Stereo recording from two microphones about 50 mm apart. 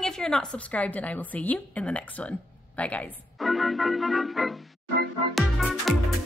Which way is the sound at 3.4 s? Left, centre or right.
Centre.